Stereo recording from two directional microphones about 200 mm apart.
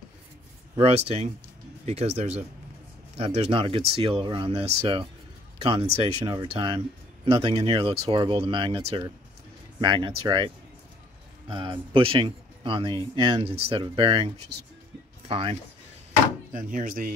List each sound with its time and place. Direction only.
0.7 s speech: 30° right (ahead or behind)
11.5 s speech: 25° right (ahead or behind)
16.5 s speech: 40° right (ahead or behind)